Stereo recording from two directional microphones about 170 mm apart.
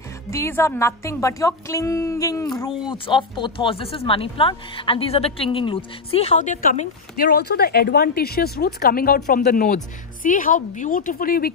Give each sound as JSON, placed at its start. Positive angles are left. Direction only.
{"t": 0.3, "sound": "a woman's voice", "side_deg": 15}
{"t": 7.2, "sound": "a woman's voice", "side_deg": 65}